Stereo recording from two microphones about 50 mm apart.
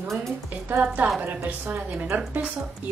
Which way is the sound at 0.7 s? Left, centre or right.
Right.